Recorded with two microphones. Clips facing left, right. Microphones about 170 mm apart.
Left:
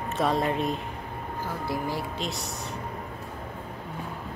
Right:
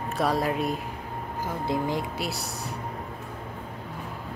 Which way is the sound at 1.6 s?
20° right (ahead or behind).